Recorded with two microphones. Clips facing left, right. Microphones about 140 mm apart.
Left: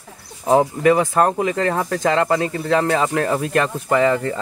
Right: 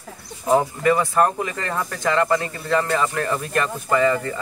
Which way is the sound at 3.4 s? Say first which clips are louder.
Left 4 dB; 90° left.